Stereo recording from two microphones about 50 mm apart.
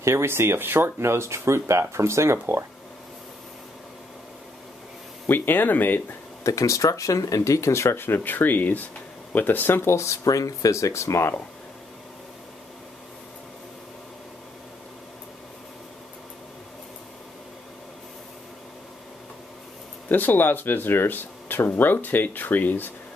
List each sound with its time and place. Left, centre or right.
0.0 s speech: right
5.3 s speech: left
6.4 s speech: left
8.0 s speech: left
10.7 s speech: left
20.1 s speech: left